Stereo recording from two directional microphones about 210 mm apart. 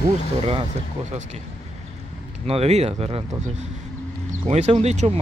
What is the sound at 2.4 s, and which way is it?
Speech, 30° right (ahead or behind).